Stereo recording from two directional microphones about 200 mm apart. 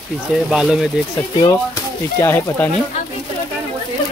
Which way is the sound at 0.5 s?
Centre (ahead or behind).